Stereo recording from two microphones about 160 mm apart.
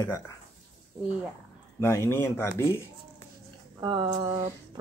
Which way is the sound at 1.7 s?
15° left (ahead or behind).